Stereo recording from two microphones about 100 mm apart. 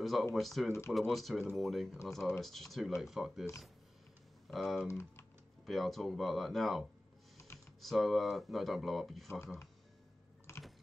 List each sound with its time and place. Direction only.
0.0 s speech: centre (ahead or behind)
0.7 s speech: 25° left (ahead or behind)
0.9 s speech: centre (ahead or behind)
4.5 s speech: centre (ahead or behind)
4.8 s speech: 25° left (ahead or behind)
5.7 s speech: centre (ahead or behind)
10.5 s typing: 30° left (ahead or behind)